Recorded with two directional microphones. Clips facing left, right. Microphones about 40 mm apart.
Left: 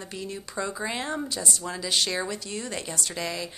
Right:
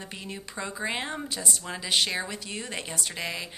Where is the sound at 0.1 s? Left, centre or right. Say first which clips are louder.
Left 4 dB; right.